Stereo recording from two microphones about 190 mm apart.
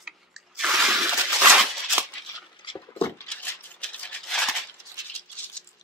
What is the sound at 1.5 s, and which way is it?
Scissors, centre (ahead or behind).